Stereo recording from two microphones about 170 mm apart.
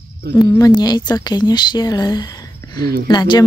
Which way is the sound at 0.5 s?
20° left (ahead or behind).